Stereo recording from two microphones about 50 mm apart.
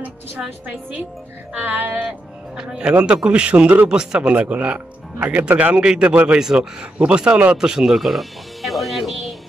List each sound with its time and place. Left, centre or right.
0.4 s speech: right
1.5 s music: right
2.0 s speech: centre
4.3 s speech: right
7.5 s speech: centre
8.1 s music: centre